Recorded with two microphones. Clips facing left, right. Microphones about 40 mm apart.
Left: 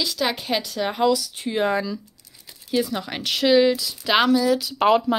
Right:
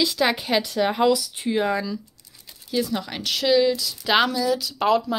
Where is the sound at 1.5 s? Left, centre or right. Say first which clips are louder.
Left 1 dB; centre.